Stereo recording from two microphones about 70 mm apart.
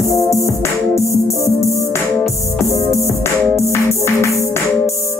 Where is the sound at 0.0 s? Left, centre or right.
Left.